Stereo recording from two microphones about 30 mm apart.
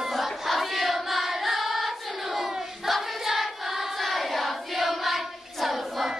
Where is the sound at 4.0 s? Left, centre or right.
Centre.